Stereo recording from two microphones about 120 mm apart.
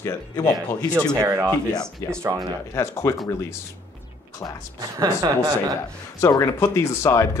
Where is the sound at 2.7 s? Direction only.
25° left (ahead or behind).